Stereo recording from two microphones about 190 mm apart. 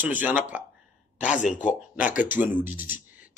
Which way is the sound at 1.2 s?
40° left (ahead or behind).